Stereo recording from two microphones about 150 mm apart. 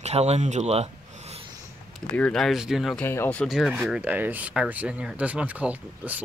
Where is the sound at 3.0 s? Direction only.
15° left (ahead or behind).